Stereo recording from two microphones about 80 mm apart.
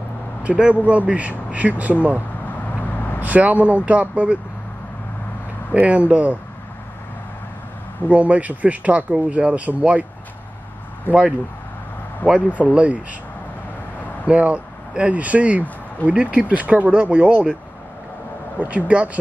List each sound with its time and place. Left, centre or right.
0.4 s speech: centre
2.6 s vehicle: left
3.2 s speech: centre
5.7 s speech: centre
8.1 s speech: centre
11.1 s speech: left
12.7 s speech: centre
14.2 s speech: centre
18.6 s speech: centre